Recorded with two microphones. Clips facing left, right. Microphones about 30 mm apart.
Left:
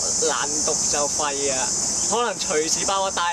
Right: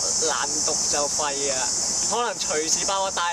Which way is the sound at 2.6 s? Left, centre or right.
Centre.